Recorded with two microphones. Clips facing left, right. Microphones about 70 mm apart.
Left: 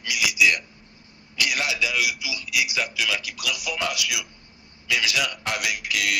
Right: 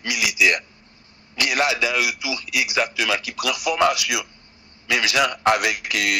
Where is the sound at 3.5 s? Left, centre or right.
Right.